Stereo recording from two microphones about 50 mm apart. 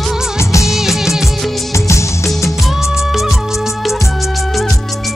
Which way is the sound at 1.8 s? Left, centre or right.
Left.